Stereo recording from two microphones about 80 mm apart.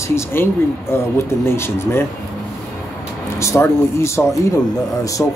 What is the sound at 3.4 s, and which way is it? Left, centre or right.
Speech, left.